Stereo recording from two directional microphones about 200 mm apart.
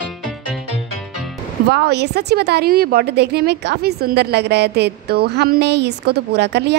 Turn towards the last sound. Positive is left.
turn(degrees=-60)  # may be behind; listen again after turning